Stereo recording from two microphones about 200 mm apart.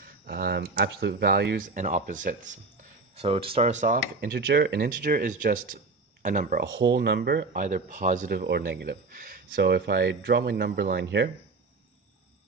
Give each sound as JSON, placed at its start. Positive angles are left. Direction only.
{"t": 0.3, "sound": "speech", "side_deg": -50}
{"t": 3.2, "sound": "speech", "side_deg": -30}